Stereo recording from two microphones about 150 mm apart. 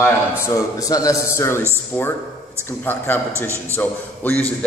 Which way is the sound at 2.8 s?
15° left (ahead or behind).